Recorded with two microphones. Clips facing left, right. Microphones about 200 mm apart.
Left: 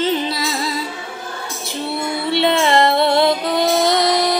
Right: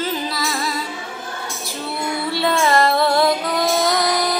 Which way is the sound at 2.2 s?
25° left (ahead or behind).